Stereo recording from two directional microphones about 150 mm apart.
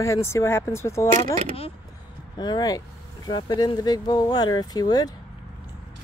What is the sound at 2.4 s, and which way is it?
Speech, 30° left (ahead or behind).